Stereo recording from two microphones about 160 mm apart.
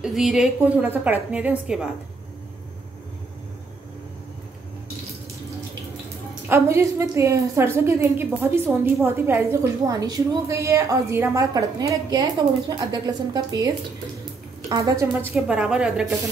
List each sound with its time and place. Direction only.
0.0 s a woman's voice: centre (ahead or behind)
6.5 s a woman's voice: 15° right (ahead or behind)
15.0 s a woman's voice: 15° right (ahead or behind)